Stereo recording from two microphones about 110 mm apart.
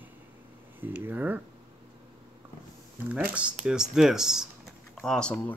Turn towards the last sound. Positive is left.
turn(degrees=5)  # may be behind; listen again after turning